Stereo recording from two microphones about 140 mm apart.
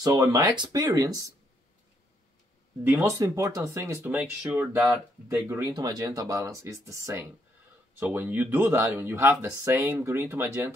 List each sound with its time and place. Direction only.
0.1 s speech: 25° right (ahead or behind)
2.8 s speech: 20° right (ahead or behind)
4.5 s speech: 5° right (ahead or behind)
5.5 s speech: 25° right (ahead or behind)